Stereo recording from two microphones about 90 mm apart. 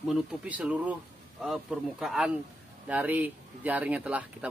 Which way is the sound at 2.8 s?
20° right (ahead or behind).